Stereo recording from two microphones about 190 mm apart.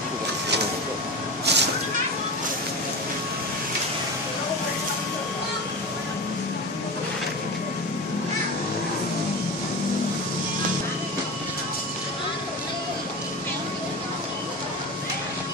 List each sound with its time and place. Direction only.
1.4 s cat: 65° right (ahead or behind)